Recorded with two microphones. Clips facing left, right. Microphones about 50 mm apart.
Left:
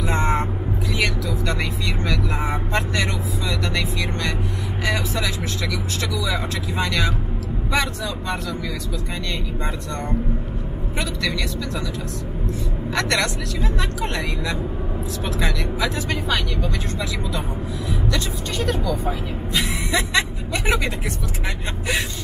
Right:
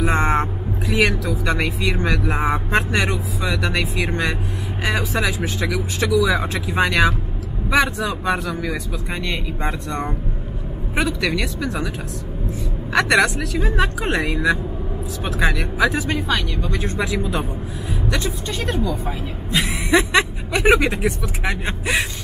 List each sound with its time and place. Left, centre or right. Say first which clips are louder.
0.1 s music: right 3 dB; right
2.0 s speech: right 3 dB; right
4.8 s speech: right 3 dB; centre
8.3 s speech: right 5 dB; right
11.6 s speech: right 4 dB; right
12.9 s speech: right 6 dB; centre
16.3 s speech: right 1 dB; centre
16.7 s speech: right 4 dB; right
19.0 s speech: left 1 dB; centre
19.9 s speech: right 6 dB; centre